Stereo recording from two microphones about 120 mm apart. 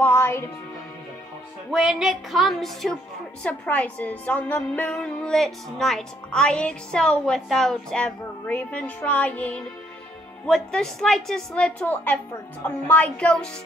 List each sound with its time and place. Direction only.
0.0 s speech: 20° left (ahead or behind)
1.7 s speech: 5° right (ahead or behind)
3.4 s a woman's voice: 10° left (ahead or behind)